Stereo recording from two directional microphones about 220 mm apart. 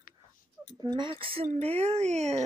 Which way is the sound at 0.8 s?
20° right (ahead or behind).